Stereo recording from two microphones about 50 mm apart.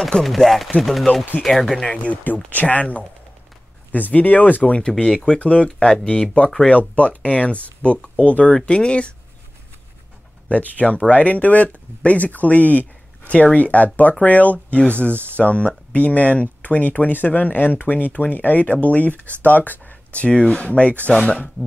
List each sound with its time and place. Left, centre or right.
0.2 s speech: centre
2.2 s speech: left
4.7 s speech: centre
10.5 s speech: left